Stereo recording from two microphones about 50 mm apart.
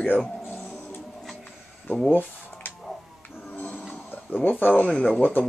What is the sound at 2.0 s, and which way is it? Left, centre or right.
Speech, left.